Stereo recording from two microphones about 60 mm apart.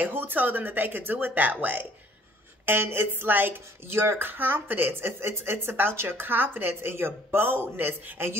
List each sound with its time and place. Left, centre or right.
0.0 s speech: right